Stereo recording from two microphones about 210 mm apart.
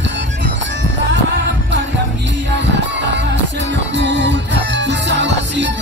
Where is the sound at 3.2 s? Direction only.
60° right (ahead or behind).